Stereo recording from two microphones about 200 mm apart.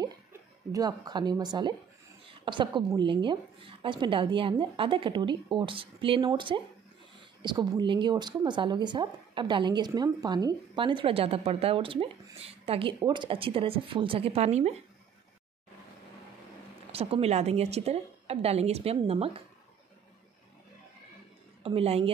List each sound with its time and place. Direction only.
0.0 s a woman's voice: 15° right (ahead or behind); by 14.8 s 35° right (ahead or behind)
16.9 s a woman's voice: 30° right (ahead or behind)
21.6 s a woman's voice: 30° right (ahead or behind)